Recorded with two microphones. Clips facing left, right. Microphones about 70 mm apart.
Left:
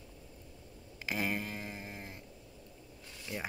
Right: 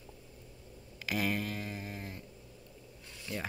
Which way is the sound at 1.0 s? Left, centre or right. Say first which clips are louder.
Right 2 dB; left.